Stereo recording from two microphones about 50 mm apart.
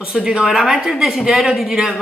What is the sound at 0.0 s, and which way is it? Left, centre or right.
Speech, centre.